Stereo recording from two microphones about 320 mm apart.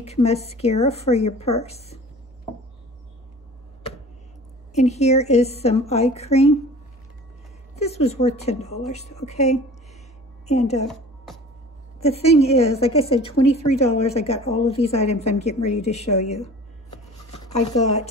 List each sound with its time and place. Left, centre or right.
0.0 s a woman's voice: centre
4.7 s a woman's voice: left
7.7 s a woman's voice: centre
12.0 s a woman's voice: centre